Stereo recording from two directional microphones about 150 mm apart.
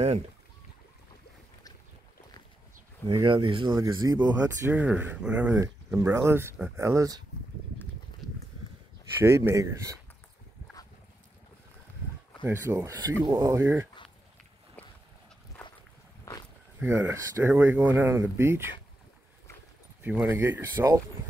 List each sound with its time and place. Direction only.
3.2 s speech: 35° right (ahead or behind)
4.6 s speech: 10° right (ahead or behind)
9.2 s speech: 15° right (ahead or behind)
12.6 s speech: 20° right (ahead or behind)
16.8 s speech: 15° right (ahead or behind)
20.0 s speech: 15° right (ahead or behind)